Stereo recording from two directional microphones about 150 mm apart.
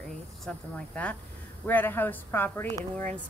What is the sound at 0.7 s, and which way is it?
Speech, 5° left (ahead or behind).